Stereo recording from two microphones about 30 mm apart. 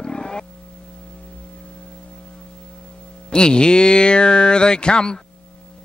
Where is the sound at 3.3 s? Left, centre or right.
Left.